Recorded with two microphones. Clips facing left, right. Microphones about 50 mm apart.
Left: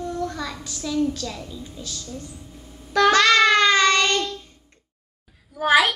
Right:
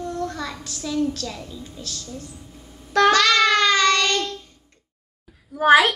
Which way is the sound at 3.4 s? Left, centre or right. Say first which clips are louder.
Left 1 dB; centre.